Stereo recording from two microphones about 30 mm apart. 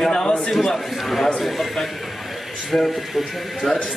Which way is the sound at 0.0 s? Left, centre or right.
Left.